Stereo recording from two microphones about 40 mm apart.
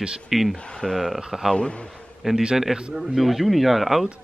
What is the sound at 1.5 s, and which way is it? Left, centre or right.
Speech, left.